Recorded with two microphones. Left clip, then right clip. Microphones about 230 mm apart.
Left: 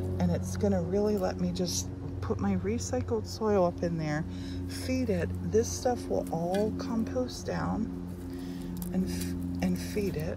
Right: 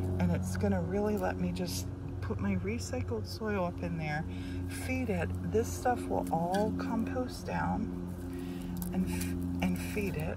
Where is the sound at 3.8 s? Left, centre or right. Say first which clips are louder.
Left 6 dB; left.